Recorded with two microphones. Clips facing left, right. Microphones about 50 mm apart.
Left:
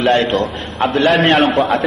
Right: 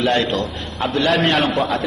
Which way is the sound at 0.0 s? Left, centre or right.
Left.